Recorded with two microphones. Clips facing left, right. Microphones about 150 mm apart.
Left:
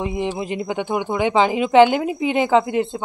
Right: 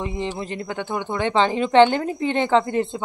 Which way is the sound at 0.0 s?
10° left (ahead or behind).